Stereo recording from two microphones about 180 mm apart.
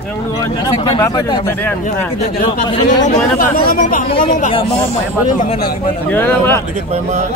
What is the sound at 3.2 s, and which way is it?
Speech, 50° left (ahead or behind).